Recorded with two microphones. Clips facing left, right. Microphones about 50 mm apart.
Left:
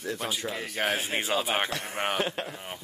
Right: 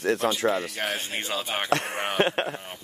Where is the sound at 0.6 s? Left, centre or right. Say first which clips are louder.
Even; centre.